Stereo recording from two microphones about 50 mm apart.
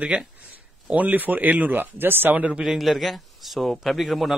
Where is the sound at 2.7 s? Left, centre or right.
Centre.